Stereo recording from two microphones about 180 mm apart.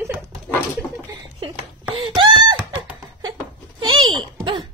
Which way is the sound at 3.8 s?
25° right (ahead or behind).